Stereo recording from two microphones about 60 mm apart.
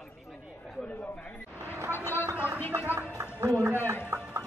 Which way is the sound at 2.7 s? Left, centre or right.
Right.